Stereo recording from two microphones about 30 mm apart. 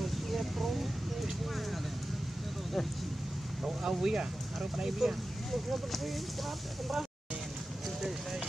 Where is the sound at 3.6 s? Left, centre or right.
Centre.